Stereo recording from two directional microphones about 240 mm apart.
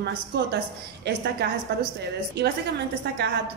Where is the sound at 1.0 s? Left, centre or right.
Right.